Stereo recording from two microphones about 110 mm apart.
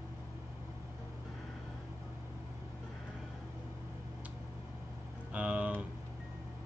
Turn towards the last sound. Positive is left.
turn(degrees=-10)  # may be behind; listen again after turning